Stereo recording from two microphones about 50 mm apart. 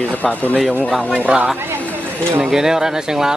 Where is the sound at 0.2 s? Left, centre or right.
Left.